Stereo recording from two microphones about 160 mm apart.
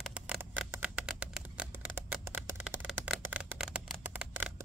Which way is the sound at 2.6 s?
5° right (ahead or behind).